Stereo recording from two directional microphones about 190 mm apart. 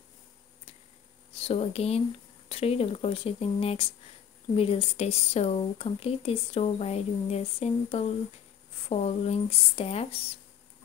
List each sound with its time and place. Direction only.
1.4 s speech: 30° left (ahead or behind)